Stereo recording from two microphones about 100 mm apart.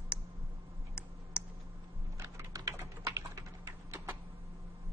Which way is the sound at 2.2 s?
30° right (ahead or behind).